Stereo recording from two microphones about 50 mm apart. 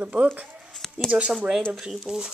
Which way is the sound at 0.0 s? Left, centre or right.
Right.